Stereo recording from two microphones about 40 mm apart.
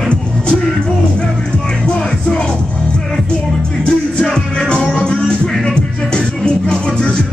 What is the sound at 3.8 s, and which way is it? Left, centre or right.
Music, left.